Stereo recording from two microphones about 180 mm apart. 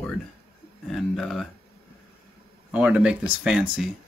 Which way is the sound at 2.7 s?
5° right (ahead or behind).